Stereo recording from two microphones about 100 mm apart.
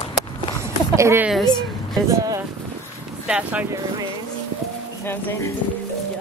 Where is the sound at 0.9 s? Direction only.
30° right (ahead or behind).